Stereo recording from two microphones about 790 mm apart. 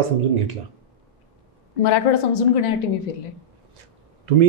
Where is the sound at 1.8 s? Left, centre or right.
Left.